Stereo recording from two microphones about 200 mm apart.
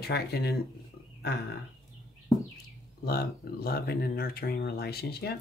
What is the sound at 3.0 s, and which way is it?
Speech, 50° left (ahead or behind).